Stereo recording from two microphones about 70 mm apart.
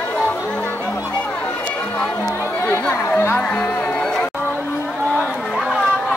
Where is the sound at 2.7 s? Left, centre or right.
Left.